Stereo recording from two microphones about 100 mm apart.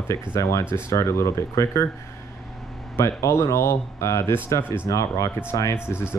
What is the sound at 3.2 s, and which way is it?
Speech, 30° left (ahead or behind).